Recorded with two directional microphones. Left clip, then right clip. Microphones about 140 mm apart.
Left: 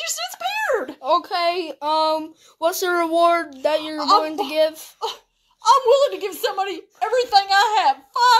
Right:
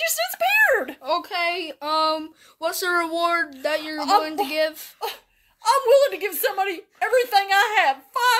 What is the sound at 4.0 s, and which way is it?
Speech, 45° right (ahead or behind).